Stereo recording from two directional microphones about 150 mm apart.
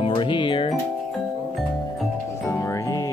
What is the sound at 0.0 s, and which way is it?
Music, 35° left (ahead or behind).